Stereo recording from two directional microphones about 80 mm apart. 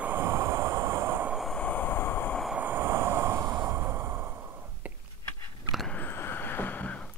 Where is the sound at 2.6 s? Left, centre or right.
Right.